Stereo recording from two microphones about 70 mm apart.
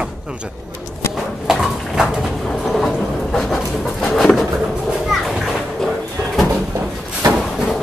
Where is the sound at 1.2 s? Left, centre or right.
Centre.